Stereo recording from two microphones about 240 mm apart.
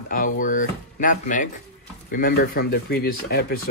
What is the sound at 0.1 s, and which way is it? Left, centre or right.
Speech, left.